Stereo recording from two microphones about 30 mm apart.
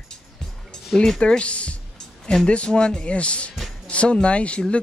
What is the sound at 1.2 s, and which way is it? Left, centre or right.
Speech, left.